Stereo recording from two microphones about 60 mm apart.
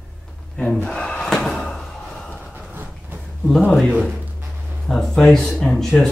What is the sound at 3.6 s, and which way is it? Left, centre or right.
Speech, centre.